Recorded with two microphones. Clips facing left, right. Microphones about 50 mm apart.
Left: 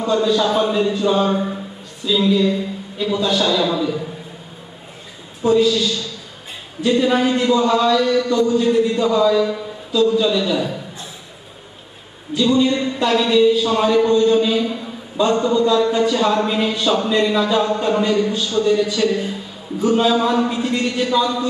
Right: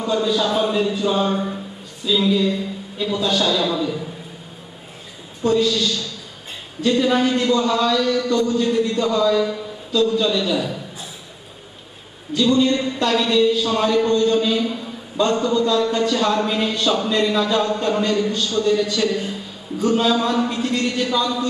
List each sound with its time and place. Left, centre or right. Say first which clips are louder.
0.0 s a man's voice: left 3 dB; centre
5.4 s a man's voice: left 3 dB; centre
12.4 s a man's voice: left 1 dB; centre